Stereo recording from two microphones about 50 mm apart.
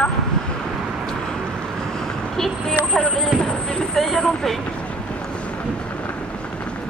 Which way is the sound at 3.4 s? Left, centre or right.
Centre.